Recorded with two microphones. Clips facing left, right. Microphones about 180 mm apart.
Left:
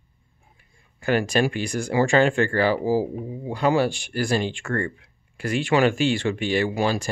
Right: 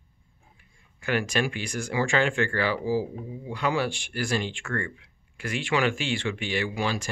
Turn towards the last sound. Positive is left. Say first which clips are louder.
# left 6 dB
turn(degrees=40)  # may be behind; listen again after turning